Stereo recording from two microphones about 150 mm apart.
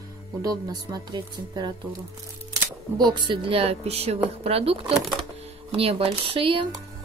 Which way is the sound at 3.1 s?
30° right (ahead or behind).